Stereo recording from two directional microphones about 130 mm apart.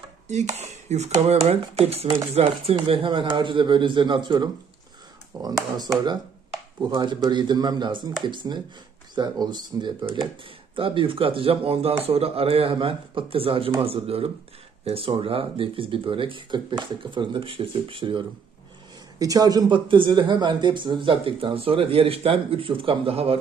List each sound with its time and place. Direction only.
0.3 s speech: 60° right (ahead or behind); by 5.5 s 25° right (ahead or behind)
6.8 s speech: 35° right (ahead or behind)
19.1 s speech: 30° right (ahead or behind); by 23.4 s 45° right (ahead or behind)